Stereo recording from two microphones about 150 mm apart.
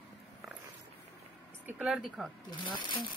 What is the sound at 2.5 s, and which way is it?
Speech, 30° left (ahead or behind).